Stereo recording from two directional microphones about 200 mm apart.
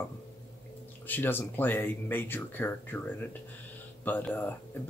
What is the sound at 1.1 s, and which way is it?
Speech, 10° left (ahead or behind).